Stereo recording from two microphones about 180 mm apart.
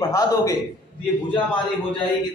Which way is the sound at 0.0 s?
20° left (ahead or behind).